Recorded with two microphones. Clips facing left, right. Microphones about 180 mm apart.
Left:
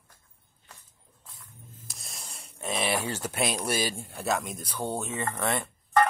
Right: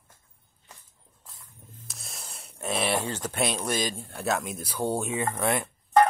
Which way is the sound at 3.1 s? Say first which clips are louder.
Right 1 dB; 10° left (ahead or behind).